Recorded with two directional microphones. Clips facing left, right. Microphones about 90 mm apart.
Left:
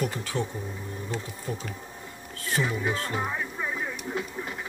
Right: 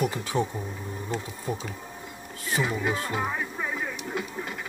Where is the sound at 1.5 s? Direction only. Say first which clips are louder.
Right 3 dB; 20° right (ahead or behind).